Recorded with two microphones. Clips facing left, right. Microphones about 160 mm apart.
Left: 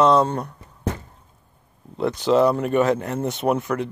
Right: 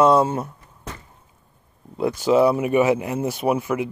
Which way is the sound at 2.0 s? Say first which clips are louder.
Right 1 dB; centre (ahead or behind).